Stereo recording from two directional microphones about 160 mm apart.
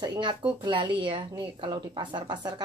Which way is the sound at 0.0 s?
30° right (ahead or behind).